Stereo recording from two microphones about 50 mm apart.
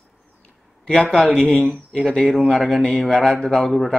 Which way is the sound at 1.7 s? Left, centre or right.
Centre.